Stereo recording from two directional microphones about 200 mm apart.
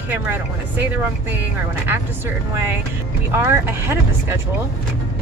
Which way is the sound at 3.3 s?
15° right (ahead or behind).